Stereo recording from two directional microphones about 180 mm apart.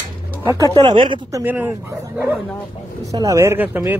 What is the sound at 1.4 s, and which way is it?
Speech, 10° right (ahead or behind).